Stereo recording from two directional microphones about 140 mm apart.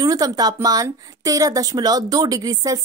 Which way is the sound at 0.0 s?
25° right (ahead or behind).